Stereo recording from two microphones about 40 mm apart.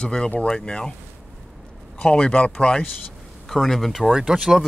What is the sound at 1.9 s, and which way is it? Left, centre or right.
Speech, left.